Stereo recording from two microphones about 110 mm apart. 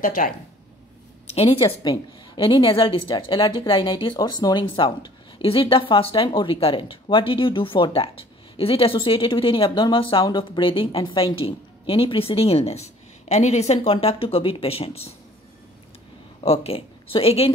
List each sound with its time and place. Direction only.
1.2 s a woman's voice: 65° left (ahead or behind)
1.8 s a woman's voice: 40° left (ahead or behind)
2.8 s a woman's voice: 50° left (ahead or behind)
16.4 s speech: 60° left (ahead or behind)